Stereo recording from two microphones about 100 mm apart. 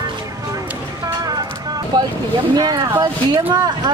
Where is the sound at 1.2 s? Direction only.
40° right (ahead or behind).